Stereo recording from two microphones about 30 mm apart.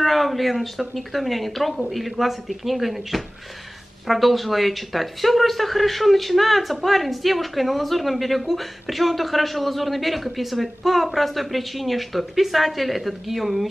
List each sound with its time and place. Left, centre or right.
0.0 s speech: centre